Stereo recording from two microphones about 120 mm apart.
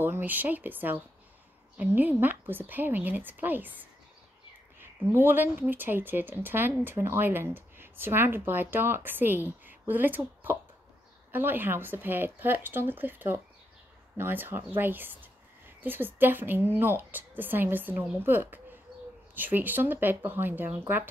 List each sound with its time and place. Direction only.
0.0 s speech: 15° right (ahead or behind)
4.7 s speech: 15° right (ahead or behind)